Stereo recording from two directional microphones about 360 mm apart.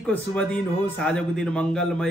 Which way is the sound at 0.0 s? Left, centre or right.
Centre.